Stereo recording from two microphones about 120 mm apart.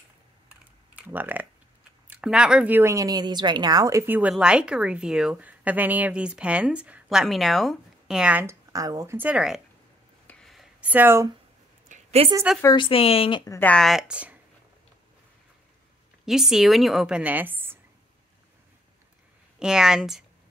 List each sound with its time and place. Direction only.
0.9 s speech: 15° right (ahead or behind); by 4.0 s 30° right (ahead or behind)
4.0 s a woman's voice: 15° right (ahead or behind)
8.5 s speech: 30° right (ahead or behind); by 9.6 s 10° right (ahead or behind)
10.2 s a sound: 5° left (ahead or behind)
10.8 s a woman's voice: 15° right (ahead or behind)
11.9 s a sound: 60° right (ahead or behind)
12.7 s speech: 45° left (ahead or behind)
13.5 s speech: 15° left (ahead or behind)
13.7 s a woman's voice: centre (ahead or behind)
16.3 s a woman's voice: 5° right (ahead or behind)
19.6 s a woman's voice: 5° right (ahead or behind)